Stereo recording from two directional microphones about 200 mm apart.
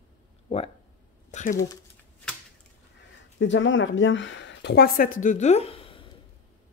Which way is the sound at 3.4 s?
70° left (ahead or behind).